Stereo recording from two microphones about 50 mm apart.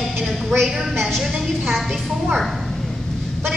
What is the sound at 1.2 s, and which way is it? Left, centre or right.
Speech, centre.